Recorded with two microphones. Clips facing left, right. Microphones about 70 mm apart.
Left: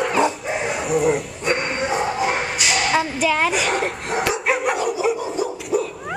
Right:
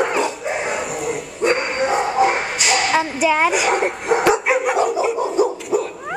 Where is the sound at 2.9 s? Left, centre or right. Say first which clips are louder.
Right 2 dB; centre.